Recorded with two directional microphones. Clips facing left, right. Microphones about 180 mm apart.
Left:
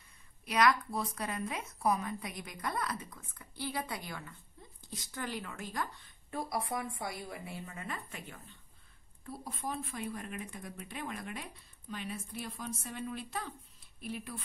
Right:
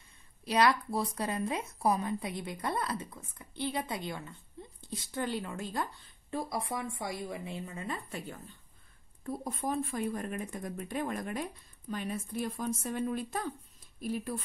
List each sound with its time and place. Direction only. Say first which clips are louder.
0.5 s a woman's voice: right 2 dB; 30° right (ahead or behind)
9.2 s speech: right 6 dB; 50° right (ahead or behind)